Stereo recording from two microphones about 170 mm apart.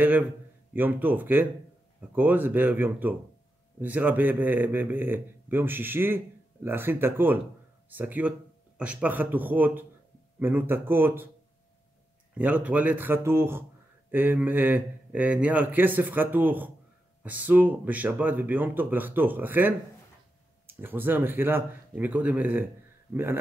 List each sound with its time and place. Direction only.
0.0 s a man's voice: 10° right (ahead or behind)
12.4 s a man's voice: 10° right (ahead or behind)